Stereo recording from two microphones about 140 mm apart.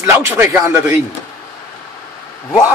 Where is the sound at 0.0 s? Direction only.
15° right (ahead or behind).